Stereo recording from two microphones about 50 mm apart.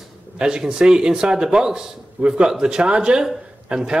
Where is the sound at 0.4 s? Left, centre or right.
Centre.